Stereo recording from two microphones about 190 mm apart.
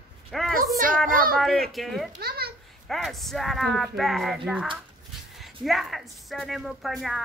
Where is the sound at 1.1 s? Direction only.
50° right (ahead or behind).